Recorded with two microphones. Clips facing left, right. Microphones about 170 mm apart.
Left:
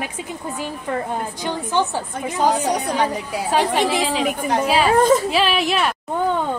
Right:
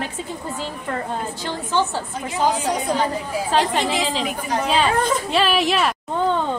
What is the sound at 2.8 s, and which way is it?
Speech, 70° left (ahead or behind).